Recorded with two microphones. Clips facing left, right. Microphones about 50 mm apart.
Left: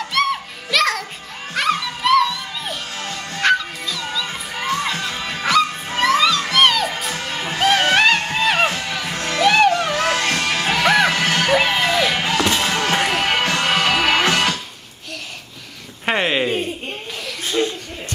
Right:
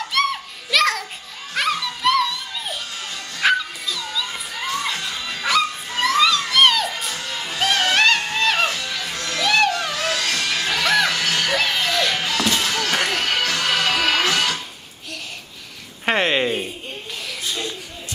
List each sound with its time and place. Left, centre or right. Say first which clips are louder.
0.1 s music: left 2 dB; centre
4.6 s music: left 3 dB; left
6.0 s music: left 1 dB; centre
7.2 s music: left 4 dB; left
7.9 s music: left 2 dB; centre
8.6 s music: left 3 dB; left
12.2 s a sound: left 3 dB; left
12.9 s music: left 3 dB; centre
13.3 s music: left 3 dB; left
16.1 s a sound: even; centre
17.4 s a sound: left 9 dB; left